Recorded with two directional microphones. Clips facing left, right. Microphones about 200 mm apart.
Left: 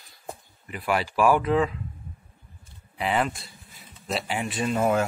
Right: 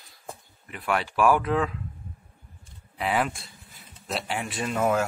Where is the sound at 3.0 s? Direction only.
Centre (ahead or behind).